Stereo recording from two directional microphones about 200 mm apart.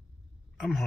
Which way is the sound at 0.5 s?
Centre (ahead or behind).